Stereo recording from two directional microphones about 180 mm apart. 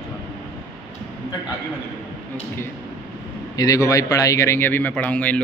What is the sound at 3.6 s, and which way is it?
A man's voice, 20° left (ahead or behind).